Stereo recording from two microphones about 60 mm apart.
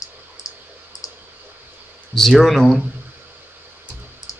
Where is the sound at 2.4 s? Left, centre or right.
Centre.